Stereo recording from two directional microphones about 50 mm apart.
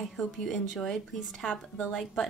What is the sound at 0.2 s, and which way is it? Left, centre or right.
A woman's voice, centre.